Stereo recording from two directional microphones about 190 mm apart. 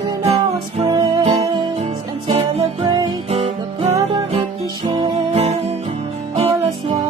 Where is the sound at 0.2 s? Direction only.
35° right (ahead or behind).